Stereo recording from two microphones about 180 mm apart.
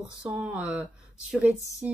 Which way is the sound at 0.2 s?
5° right (ahead or behind).